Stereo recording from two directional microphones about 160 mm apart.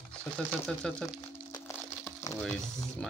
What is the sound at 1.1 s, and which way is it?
Crumpling, 20° left (ahead or behind).